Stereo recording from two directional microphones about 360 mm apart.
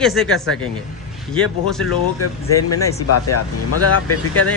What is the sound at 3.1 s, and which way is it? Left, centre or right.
Speech, left.